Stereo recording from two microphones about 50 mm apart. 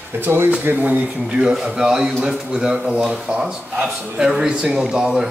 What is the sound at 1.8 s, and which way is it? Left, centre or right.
Speech, centre.